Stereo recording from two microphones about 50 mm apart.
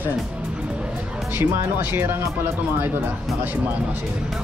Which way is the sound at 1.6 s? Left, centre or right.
Right.